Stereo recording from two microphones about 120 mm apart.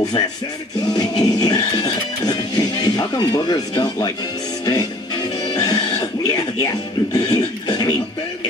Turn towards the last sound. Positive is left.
turn(degrees=35)  # may be behind; listen again after turning